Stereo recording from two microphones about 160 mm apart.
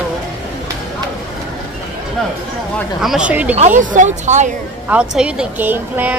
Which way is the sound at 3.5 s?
50° right (ahead or behind).